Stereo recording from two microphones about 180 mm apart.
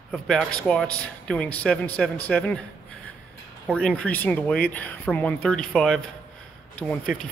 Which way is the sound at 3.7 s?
5° left (ahead or behind).